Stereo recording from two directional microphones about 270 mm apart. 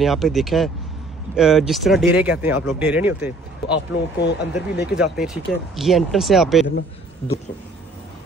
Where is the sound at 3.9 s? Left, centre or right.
Left.